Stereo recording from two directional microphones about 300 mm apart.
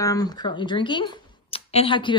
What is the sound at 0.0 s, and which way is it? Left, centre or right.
Speech, centre.